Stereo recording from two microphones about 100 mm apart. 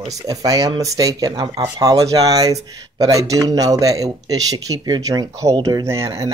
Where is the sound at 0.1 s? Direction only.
35° right (ahead or behind).